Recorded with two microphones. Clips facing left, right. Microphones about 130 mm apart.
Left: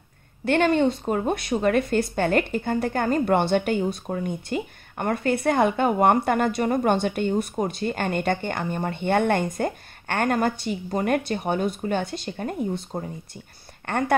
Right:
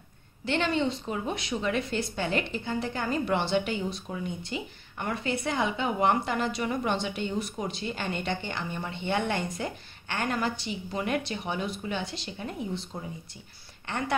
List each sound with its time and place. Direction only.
0.5 s a woman's voice: 50° left (ahead or behind)